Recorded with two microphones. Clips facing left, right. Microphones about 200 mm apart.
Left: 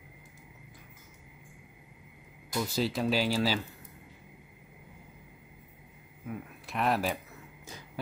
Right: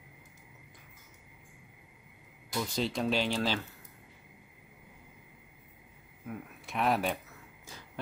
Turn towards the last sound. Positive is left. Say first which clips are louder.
# even
turn(degrees=0)  # may be behind; listen again after turning